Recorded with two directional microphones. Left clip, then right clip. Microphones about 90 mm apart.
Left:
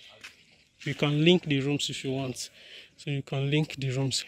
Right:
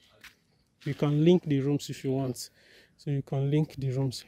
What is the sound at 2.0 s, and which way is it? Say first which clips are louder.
Speech: right 1 dB; 90° right.